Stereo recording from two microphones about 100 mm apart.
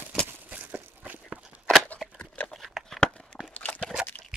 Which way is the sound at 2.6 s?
Centre (ahead or behind).